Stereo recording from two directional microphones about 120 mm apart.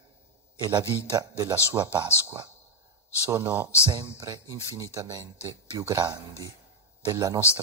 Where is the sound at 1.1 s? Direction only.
30° right (ahead or behind).